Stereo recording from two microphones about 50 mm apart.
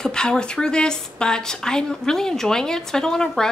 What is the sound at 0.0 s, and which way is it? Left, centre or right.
Speech, centre.